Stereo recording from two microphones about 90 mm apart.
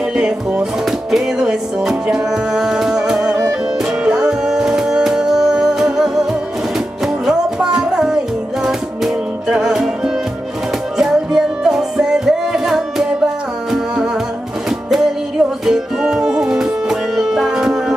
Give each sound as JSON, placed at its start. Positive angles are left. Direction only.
{"t": 0.1, "sound": "music", "side_deg": -10}
{"t": 7.2, "sound": "music", "side_deg": -5}
{"t": 15.6, "sound": "music", "side_deg": -5}